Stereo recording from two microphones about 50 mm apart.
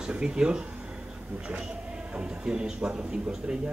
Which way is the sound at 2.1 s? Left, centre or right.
Centre.